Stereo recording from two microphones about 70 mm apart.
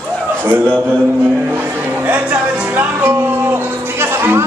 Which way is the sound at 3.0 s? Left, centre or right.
Right.